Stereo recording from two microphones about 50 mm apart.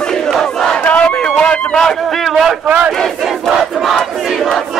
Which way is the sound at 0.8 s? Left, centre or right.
Left.